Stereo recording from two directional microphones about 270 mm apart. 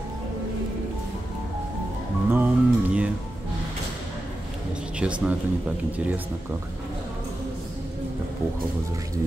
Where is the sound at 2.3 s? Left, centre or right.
Centre.